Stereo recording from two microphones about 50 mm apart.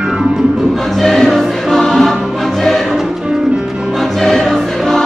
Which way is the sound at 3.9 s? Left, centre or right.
Centre.